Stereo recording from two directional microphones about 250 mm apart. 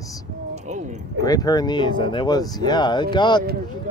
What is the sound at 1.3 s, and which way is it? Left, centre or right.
Speech, centre.